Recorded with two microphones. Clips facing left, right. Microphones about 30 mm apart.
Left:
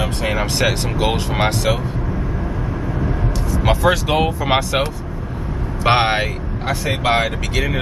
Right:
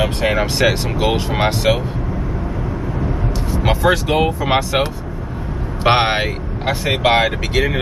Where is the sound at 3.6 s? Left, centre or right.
Centre.